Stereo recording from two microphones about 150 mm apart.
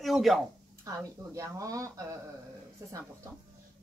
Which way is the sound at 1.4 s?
20° right (ahead or behind).